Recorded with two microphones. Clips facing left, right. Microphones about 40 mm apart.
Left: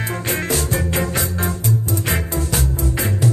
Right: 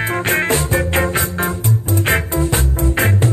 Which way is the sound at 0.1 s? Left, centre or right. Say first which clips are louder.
Right 5 dB; right.